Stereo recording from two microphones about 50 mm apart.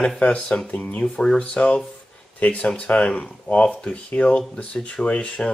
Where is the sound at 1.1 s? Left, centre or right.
Centre.